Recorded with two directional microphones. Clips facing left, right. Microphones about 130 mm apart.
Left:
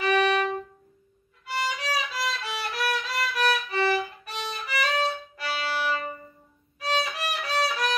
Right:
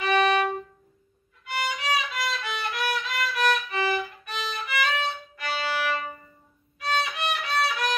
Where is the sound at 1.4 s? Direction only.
35° left (ahead or behind).